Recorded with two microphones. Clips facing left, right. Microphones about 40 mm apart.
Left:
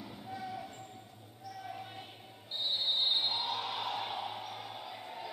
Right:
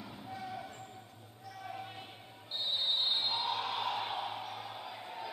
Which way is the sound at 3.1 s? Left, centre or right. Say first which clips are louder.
Left 1 dB; right.